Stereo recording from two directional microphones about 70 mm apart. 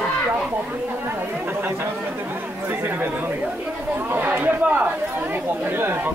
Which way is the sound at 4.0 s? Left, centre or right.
Right.